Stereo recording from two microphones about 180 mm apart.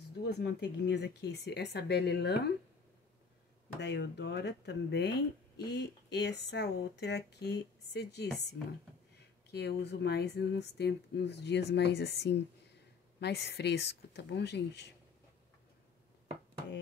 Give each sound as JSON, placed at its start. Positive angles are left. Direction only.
{"t": 0.2, "sound": "speech", "side_deg": 65}
{"t": 3.8, "sound": "speech", "side_deg": 70}
{"t": 9.5, "sound": "speech", "side_deg": 70}